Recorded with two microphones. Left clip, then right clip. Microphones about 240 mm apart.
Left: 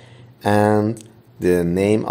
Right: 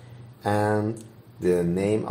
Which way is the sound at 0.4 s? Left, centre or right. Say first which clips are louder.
Left 7 dB; left.